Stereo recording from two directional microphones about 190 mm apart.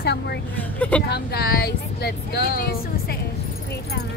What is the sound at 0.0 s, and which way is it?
Vehicle, 60° left (ahead or behind).